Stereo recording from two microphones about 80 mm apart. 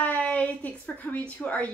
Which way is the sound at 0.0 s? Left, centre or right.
Centre.